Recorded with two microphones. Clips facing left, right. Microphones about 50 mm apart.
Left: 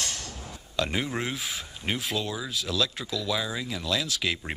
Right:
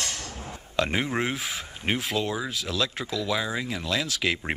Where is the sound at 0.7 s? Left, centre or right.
Right.